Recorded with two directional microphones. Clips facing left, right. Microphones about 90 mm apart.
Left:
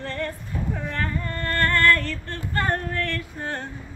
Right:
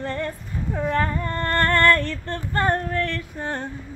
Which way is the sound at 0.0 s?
15° right (ahead or behind).